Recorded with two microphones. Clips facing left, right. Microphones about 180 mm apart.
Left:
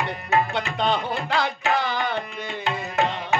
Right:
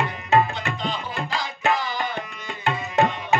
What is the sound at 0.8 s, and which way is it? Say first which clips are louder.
Music: left 5 dB; 65° left (ahead or behind).